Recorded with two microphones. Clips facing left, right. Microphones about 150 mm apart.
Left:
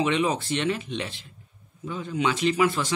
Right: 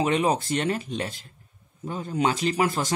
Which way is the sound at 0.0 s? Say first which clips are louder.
Right 1 dB; 40° right (ahead or behind).